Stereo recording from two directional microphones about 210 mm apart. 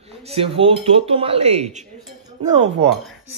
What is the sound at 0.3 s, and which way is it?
Speech, 25° right (ahead or behind).